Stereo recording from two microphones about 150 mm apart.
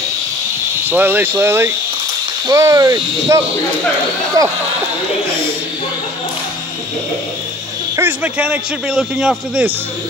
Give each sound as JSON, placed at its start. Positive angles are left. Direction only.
{"t": 0.8, "sound": "a man's voice", "side_deg": -15}
{"t": 7.9, "sound": "a man's voice", "side_deg": -10}